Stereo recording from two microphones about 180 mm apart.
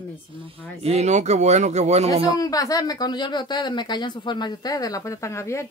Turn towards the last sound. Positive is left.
turn(degrees=15)  # may be behind; listen again after turning